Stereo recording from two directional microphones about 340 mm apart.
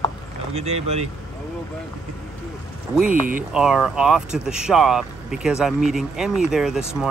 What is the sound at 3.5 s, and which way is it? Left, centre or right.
Speech, centre.